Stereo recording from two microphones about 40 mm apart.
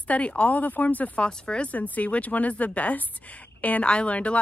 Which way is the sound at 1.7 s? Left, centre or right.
Left.